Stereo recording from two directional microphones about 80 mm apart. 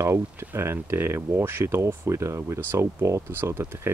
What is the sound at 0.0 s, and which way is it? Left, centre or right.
Speech, right.